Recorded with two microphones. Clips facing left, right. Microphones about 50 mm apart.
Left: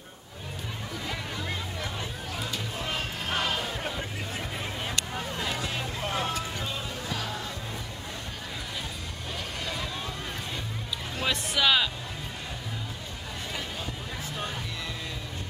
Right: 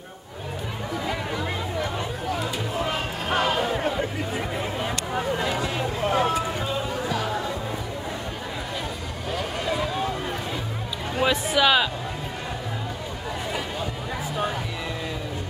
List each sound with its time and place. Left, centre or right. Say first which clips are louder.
1.0 s a sound: right 6 dB; centre
9.3 s vehicle: right 8 dB; centre
11.2 s music: right 5 dB; centre